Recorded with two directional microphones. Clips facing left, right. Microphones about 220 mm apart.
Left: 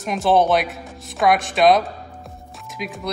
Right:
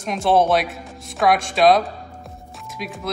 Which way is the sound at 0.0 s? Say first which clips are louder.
Even; centre (ahead or behind).